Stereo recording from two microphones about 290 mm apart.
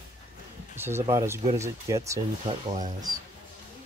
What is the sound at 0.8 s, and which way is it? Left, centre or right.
Speech, centre.